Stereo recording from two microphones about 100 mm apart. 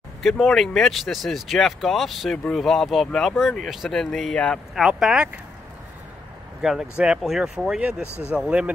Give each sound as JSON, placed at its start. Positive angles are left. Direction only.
{"t": 0.2, "sound": "speech", "side_deg": 5}
{"t": 4.8, "sound": "speech", "side_deg": -5}
{"t": 6.6, "sound": "speech", "side_deg": -5}
{"t": 8.1, "sound": "speech", "side_deg": 25}
{"t": 8.4, "sound": "speech", "side_deg": -10}